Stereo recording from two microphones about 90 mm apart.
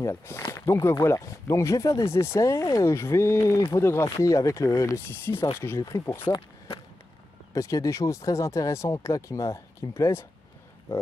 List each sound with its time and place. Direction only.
0.0 s speech: 30° left (ahead or behind)
6.2 s speech: 90° left
7.5 s speech: 35° left (ahead or behind)